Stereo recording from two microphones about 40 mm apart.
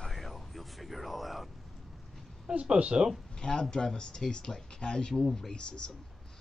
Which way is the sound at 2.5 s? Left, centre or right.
Right.